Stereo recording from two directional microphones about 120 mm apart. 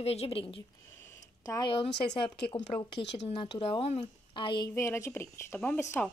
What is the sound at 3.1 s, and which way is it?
Speech, 55° left (ahead or behind).